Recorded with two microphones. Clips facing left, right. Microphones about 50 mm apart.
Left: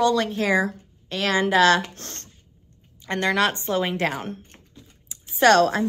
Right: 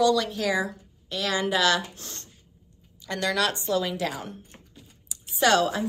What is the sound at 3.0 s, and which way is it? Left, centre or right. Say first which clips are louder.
A woman's voice: left 4 dB; left.